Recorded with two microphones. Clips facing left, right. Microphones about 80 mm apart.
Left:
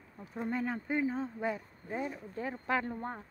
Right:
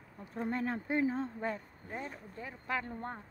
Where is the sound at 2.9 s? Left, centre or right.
Centre.